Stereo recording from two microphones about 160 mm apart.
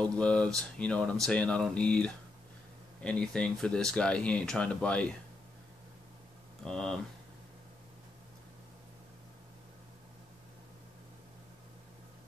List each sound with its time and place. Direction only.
0.0 s speech: 5° left (ahead or behind)
6.6 s speech: 5° left (ahead or behind)